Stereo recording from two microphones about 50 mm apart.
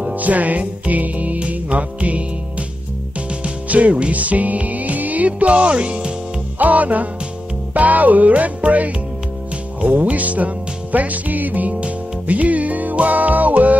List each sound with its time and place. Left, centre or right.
0.1 s music: right
3.4 s music: right